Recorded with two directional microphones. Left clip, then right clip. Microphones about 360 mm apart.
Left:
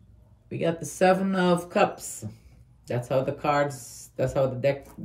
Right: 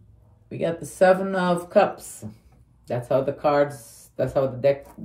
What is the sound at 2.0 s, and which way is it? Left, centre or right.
Speech, centre.